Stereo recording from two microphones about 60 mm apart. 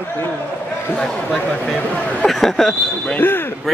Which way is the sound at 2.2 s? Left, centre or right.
Centre.